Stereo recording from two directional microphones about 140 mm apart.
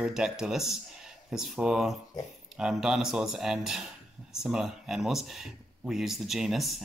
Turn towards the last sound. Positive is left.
turn(degrees=0)  # may be behind; listen again after turning